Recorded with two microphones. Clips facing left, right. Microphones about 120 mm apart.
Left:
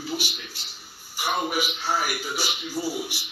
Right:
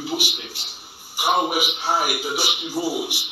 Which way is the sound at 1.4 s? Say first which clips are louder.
Right 4 dB; 15° right (ahead or behind).